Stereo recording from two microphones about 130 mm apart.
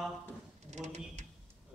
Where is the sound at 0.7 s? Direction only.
60° right (ahead or behind).